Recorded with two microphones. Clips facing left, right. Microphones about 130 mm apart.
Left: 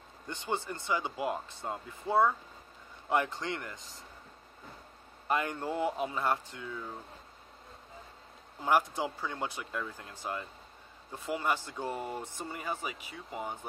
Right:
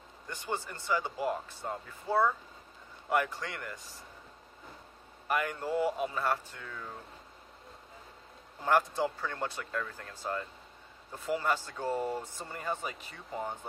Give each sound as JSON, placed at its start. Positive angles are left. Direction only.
{"t": 0.3, "sound": "speech", "side_deg": 20}
{"t": 5.3, "sound": "speech", "side_deg": 25}
{"t": 8.6, "sound": "speech", "side_deg": 15}